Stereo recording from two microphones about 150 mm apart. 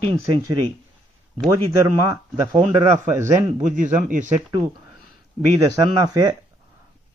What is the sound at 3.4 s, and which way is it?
Speech, 60° right (ahead or behind).